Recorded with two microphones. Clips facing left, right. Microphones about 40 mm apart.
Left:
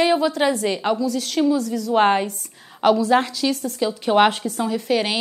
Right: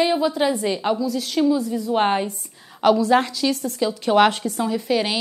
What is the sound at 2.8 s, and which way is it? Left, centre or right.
Speech, left.